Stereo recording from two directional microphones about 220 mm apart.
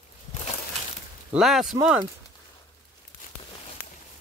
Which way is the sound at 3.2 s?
40° left (ahead or behind).